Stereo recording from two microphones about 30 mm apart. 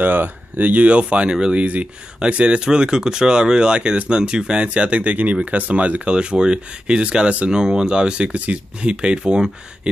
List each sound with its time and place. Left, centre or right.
0.0 s speech: right
0.8 s speech: right
2.1 s speech: right
2.6 s speech: right
4.6 s speech: right
5.1 s speech: right
6.0 s speech: right
7.2 s speech: right
7.5 s speech: right
7.8 s speech: right
8.3 s speech: right
8.9 s speech: right